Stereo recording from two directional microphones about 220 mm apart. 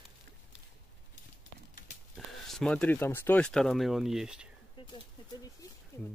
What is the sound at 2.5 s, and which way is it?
Speech, centre (ahead or behind).